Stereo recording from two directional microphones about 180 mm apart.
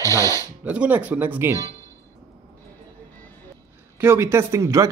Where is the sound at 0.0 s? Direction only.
15° left (ahead or behind).